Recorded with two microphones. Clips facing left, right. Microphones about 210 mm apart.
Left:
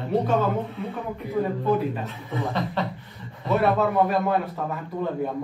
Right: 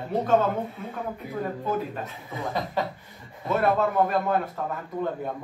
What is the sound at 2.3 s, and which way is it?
A man's voice, 15° right (ahead or behind).